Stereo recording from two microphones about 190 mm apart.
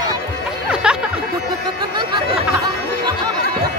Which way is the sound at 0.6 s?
5° right (ahead or behind).